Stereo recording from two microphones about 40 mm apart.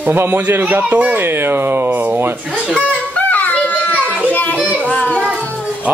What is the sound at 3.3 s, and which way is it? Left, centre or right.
Music, left.